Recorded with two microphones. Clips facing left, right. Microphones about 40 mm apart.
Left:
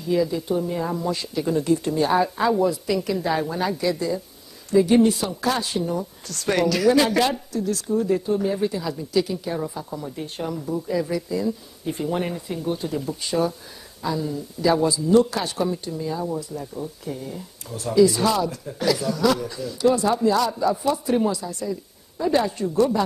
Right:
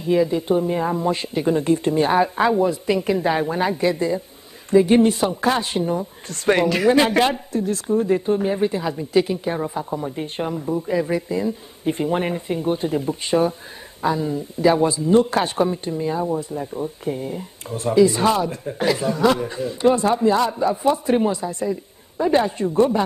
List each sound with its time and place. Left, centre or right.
0.0 s speech: right